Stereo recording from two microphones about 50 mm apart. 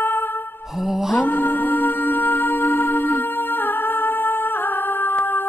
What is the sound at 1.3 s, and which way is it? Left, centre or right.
Music, left.